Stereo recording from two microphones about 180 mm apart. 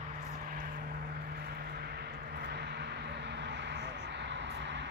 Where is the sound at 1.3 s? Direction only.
60° right (ahead or behind).